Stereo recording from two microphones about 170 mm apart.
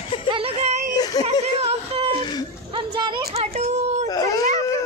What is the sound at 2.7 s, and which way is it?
Speech, 30° right (ahead or behind).